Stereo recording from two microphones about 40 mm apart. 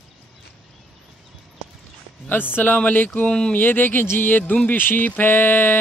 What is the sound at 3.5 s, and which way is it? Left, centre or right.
Speech, left.